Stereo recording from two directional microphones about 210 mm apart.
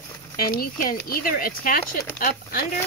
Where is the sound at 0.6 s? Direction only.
45° left (ahead or behind).